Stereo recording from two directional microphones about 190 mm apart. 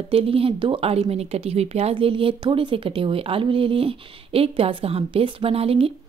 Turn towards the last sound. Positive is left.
turn(degrees=-30)  # may be behind; listen again after turning